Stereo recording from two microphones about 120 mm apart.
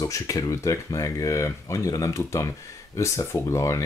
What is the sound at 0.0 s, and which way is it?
Speech, 30° left (ahead or behind).